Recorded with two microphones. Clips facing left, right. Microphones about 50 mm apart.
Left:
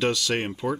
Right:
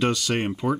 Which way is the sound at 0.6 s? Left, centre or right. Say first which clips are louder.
Right 4 dB; centre.